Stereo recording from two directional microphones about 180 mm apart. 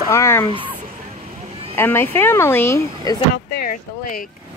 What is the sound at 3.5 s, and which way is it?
Speech, 50° left (ahead or behind).